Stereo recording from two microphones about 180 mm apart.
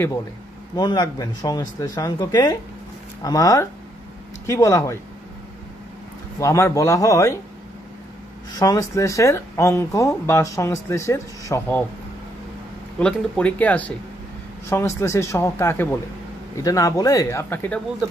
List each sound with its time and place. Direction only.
0.7 s speech: 25° left (ahead or behind)
6.4 s speech: 15° left (ahead or behind)
8.5 s speech: 20° left (ahead or behind)
13.0 s speech: 5° left (ahead or behind)